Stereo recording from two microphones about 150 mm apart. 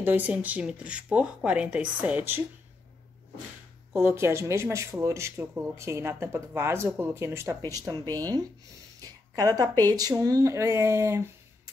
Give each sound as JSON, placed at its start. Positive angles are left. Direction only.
{"t": 0.0, "sound": "speech", "side_deg": -10}
{"t": 3.9, "sound": "speech", "side_deg": -15}
{"t": 9.0, "sound": "a sound", "side_deg": -25}
{"t": 9.8, "sound": "speech", "side_deg": -25}